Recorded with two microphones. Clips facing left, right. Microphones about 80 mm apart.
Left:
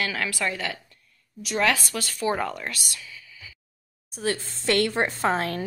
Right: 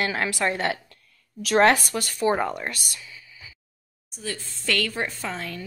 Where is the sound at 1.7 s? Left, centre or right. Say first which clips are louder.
Right 3 dB; right.